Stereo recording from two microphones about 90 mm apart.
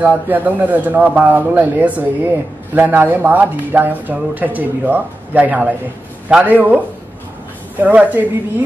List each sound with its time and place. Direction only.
0.0 s a man's voice: 20° right (ahead or behind)
7.8 s a man's voice: 20° right (ahead or behind)